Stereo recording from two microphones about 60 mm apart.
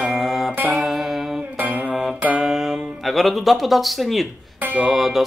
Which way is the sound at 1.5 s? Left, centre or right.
Right.